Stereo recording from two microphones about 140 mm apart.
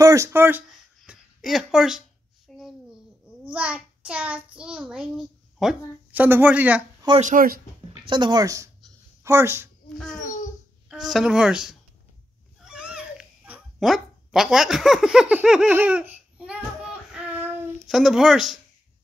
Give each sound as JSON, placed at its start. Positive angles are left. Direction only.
{"t": 0.0, "sound": "speech", "side_deg": -20}
{"t": 0.7, "sound": "a sound", "side_deg": 0}
{"t": 3.5, "sound": "child singing", "side_deg": -10}
{"t": 4.6, "sound": "a child's voice", "side_deg": -5}
{"t": 7.2, "sound": "speech", "side_deg": -70}
{"t": 8.1, "sound": "speech", "side_deg": -30}
{"t": 9.9, "sound": "speech", "side_deg": 5}
{"t": 10.2, "sound": "babbling", "side_deg": 60}
{"t": 10.9, "sound": "speech", "side_deg": 0}
{"t": 12.6, "sound": "babbling", "side_deg": -5}
{"t": 17.9, "sound": "speech", "side_deg": 0}